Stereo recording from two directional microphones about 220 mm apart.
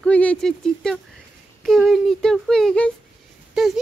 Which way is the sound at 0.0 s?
5° left (ahead or behind).